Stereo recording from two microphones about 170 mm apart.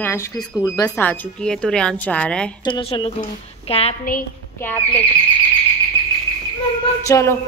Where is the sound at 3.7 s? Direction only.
35° left (ahead or behind).